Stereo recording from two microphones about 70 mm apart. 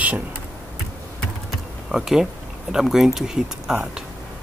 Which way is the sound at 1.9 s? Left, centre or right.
Centre.